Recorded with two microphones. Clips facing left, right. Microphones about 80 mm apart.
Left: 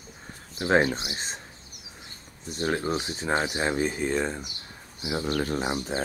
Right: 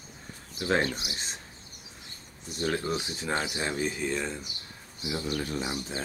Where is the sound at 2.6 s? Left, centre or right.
Left.